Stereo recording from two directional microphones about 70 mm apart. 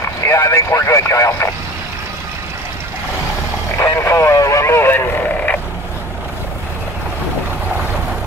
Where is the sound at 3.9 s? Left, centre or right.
Left.